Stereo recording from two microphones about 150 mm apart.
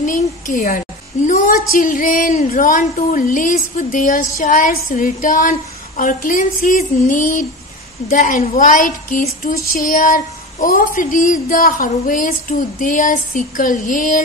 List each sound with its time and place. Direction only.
0.0 s a child's voice: 60° left (ahead or behind)